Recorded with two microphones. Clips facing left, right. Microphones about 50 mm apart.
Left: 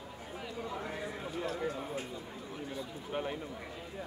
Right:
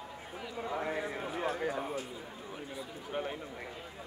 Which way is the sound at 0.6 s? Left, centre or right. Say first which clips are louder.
Right 6 dB; right.